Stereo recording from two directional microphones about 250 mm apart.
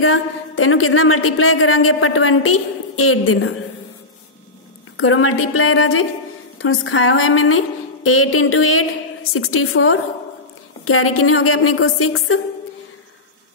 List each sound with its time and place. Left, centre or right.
0.0 s a woman's voice: left
4.9 s a woman's voice: left